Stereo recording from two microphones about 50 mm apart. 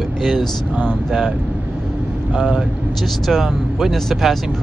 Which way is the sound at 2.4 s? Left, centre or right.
Centre.